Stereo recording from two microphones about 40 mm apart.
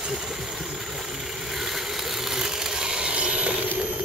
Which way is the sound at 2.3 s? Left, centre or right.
Centre.